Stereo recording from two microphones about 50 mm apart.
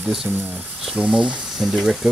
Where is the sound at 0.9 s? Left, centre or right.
Centre.